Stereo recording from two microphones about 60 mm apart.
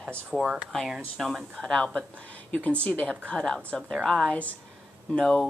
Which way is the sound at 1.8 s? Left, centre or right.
Centre.